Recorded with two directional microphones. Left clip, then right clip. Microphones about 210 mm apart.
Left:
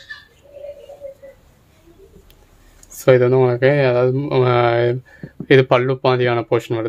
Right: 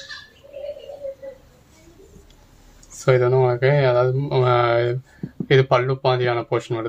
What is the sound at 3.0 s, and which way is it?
Speech, 50° left (ahead or behind).